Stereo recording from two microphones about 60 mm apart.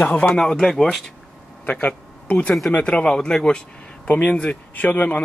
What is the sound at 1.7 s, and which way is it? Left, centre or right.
Speech, left.